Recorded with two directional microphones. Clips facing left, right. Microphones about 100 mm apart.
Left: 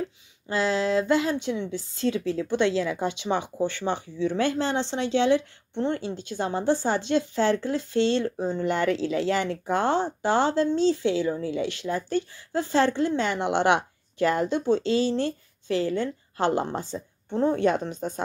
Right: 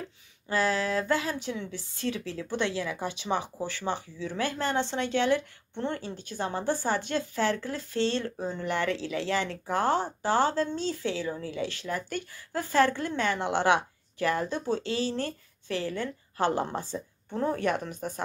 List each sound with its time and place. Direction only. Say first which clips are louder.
0.5 s speech: left 3 dB; 25° left (ahead or behind)